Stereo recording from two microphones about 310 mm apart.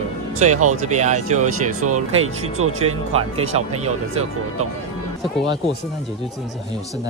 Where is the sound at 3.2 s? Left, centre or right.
Centre.